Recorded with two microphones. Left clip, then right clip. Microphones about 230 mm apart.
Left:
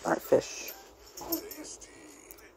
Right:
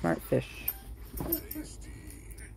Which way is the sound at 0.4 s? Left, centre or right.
Centre.